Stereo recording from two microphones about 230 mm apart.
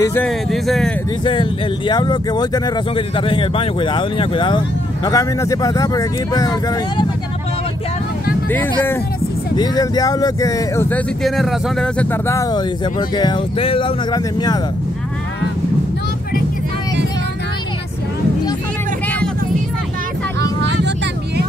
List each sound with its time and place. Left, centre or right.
0.0 s speech: centre
1.2 s speech: left
8.5 s speech: centre
11.2 s speech: centre
20.6 s vehicle: right